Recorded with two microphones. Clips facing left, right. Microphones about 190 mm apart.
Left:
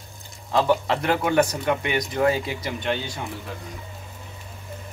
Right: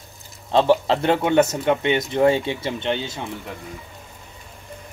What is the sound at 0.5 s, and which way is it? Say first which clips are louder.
Speech: right 4 dB; 30° right (ahead or behind).